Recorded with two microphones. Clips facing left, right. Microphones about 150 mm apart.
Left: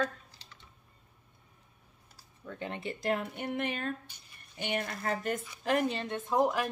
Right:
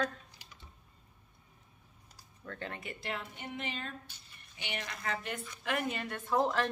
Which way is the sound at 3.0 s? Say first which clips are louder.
Left 10 dB; 50° left (ahead or behind).